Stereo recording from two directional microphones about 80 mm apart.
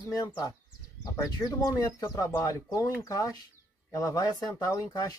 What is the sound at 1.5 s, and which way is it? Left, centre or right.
Speech, left.